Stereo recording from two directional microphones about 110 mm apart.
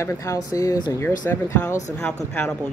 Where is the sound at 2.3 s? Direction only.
10° left (ahead or behind).